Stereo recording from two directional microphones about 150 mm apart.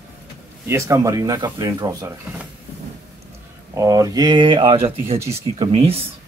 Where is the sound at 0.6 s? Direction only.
20° right (ahead or behind).